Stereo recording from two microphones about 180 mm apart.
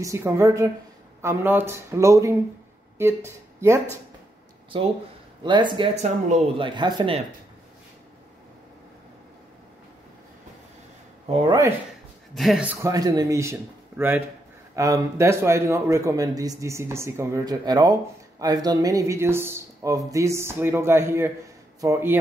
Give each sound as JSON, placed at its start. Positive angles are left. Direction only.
{"t": 0.0, "sound": "a man's voice", "side_deg": -15}
{"t": 4.7, "sound": "speech", "side_deg": -30}
{"t": 5.9, "sound": "speech", "side_deg": -40}
{"t": 6.6, "sound": "speech", "side_deg": -25}
{"t": 12.4, "sound": "a man's voice", "side_deg": -5}